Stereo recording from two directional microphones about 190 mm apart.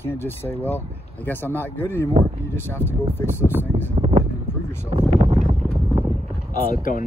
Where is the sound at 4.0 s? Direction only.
35° right (ahead or behind).